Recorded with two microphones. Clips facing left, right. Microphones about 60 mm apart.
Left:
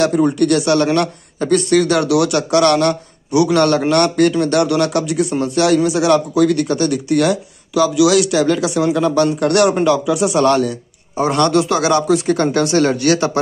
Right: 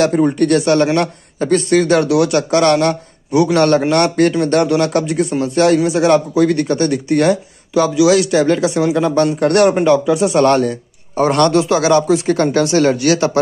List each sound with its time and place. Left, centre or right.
0.4 s a man's voice: right
11.5 s speech: right
13.1 s a man's voice: left